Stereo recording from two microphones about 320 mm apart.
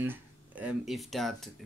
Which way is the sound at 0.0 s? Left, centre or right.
Centre.